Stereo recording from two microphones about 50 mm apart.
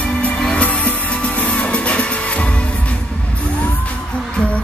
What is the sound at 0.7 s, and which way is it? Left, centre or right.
Music, left.